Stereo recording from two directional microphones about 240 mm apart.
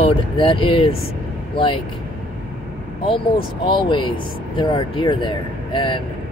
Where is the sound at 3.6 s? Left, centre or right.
Centre.